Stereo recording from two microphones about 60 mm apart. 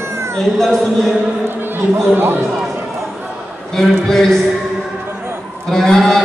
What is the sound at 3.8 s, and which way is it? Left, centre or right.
Speech, centre.